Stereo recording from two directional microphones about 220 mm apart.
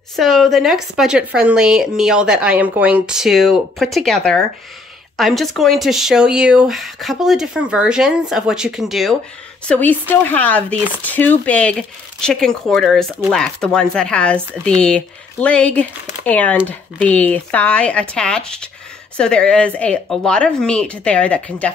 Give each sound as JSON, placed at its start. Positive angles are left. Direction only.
{"t": 0.1, "sound": "a woman's voice", "side_deg": 0}